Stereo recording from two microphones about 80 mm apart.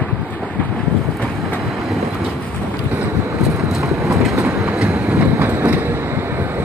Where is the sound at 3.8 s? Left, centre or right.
Right.